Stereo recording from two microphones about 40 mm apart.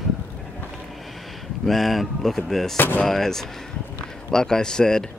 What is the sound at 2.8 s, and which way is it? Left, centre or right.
Speech, left.